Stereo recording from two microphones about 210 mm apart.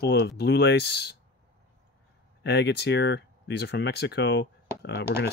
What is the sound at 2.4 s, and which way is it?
Speech, 55° left (ahead or behind).